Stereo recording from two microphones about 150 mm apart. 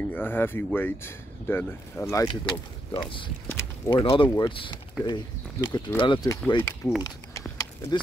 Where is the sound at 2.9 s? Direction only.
35° left (ahead or behind).